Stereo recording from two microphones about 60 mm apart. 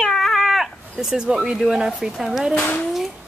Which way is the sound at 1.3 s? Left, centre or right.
Centre.